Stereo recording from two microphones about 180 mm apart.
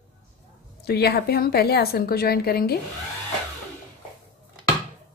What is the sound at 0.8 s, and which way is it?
A woman's voice, 65° left (ahead or behind).